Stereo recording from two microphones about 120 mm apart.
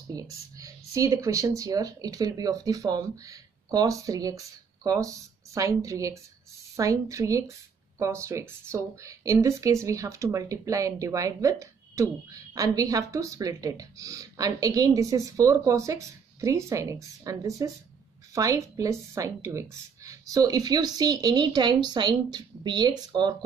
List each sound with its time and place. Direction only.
0.1 s a woman's voice: 30° right (ahead or behind)